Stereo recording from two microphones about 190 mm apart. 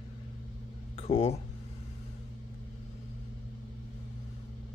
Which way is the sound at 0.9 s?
30° left (ahead or behind).